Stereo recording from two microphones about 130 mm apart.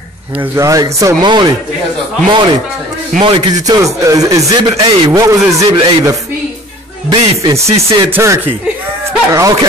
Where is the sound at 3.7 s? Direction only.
25° right (ahead or behind).